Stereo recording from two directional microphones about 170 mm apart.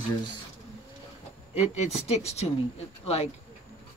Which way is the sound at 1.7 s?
40° left (ahead or behind).